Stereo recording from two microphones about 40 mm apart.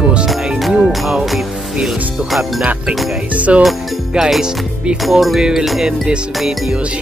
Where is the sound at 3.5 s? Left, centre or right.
Right.